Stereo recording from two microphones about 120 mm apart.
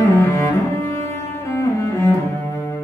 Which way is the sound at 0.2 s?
20° left (ahead or behind).